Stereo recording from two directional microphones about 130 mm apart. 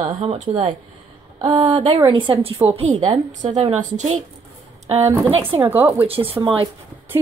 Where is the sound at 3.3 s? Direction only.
70° right (ahead or behind).